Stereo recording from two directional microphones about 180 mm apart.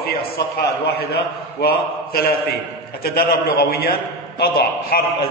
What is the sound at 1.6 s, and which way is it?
A man's voice, 55° left (ahead or behind).